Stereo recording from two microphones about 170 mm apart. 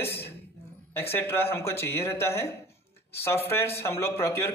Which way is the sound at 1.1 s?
15° left (ahead or behind).